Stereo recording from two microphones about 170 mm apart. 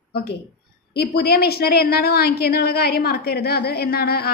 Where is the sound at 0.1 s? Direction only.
65° left (ahead or behind).